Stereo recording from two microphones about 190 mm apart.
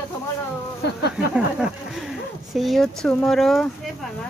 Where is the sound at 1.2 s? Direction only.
Centre (ahead or behind).